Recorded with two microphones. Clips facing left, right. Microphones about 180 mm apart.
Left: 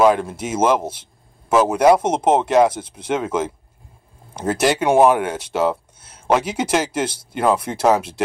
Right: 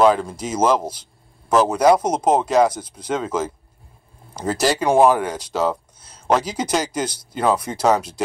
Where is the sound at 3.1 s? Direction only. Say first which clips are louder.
Left 2 dB; 5° left (ahead or behind).